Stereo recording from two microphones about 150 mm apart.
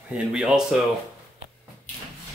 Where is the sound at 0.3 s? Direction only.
5° right (ahead or behind).